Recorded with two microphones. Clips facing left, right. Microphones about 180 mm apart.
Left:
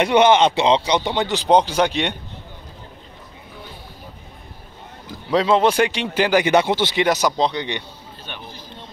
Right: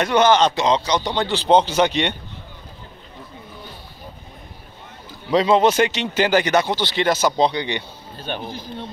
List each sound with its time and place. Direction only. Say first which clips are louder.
0.1 s a man's voice: left 1 dB; 25° left (ahead or behind)
1.1 s speech: right 1 dB; 10° left (ahead or behind)
5.3 s speech: right 1 dB; 5° left (ahead or behind)
5.8 s speech: even; 10° left (ahead or behind)
7.2 s speech: right 1 dB; 5° right (ahead or behind)
8.3 s speech: right 9 dB; 35° right (ahead or behind)